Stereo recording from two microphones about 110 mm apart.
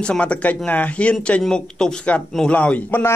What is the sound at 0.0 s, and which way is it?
Speech, 10° left (ahead or behind).